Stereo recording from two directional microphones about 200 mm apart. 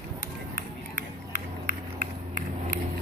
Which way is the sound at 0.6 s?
40° right (ahead or behind).